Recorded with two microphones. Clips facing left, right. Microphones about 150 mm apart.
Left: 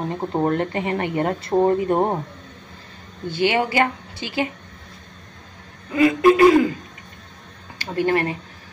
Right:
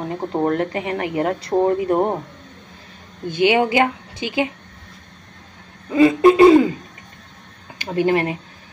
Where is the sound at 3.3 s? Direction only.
15° right (ahead or behind).